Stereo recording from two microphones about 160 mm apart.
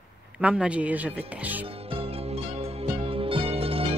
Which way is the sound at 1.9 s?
35° right (ahead or behind).